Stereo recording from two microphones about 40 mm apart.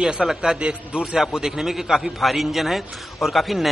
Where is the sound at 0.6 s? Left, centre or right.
Right.